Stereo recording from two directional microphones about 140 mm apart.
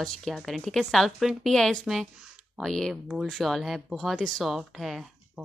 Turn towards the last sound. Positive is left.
turn(degrees=0)  # may be behind; listen again after turning